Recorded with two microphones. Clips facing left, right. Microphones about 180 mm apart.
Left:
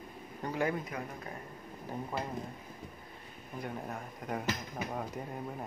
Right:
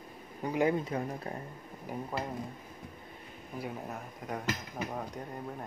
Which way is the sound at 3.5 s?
5° right (ahead or behind).